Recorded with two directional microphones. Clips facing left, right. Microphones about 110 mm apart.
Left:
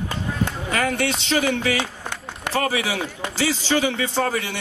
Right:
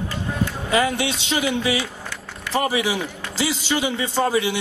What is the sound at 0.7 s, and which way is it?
A man's voice, 15° right (ahead or behind).